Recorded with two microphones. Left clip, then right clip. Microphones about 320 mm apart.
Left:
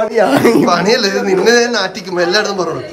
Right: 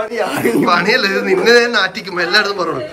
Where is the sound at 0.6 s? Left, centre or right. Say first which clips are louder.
Left 1 dB; centre.